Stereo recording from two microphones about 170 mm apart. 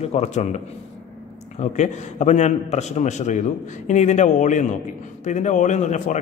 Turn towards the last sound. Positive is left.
turn(degrees=45)  # may be behind; listen again after turning